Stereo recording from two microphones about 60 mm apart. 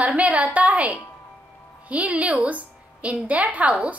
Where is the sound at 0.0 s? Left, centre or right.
Right.